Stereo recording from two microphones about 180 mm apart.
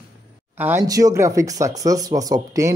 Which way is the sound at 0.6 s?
10° right (ahead or behind).